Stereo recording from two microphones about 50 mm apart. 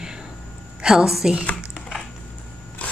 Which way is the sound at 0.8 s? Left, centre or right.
Centre.